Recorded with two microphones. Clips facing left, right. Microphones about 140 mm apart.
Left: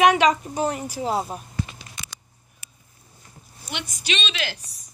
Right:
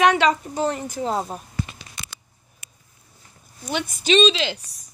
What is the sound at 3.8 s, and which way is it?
Speech, 55° right (ahead or behind).